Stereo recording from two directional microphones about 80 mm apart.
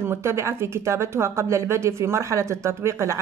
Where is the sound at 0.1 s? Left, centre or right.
Right.